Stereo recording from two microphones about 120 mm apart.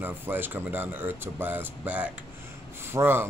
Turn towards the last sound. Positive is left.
turn(degrees=-20)  # may be behind; listen again after turning